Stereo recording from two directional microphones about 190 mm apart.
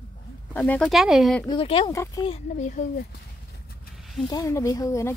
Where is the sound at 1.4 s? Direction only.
25° left (ahead or behind).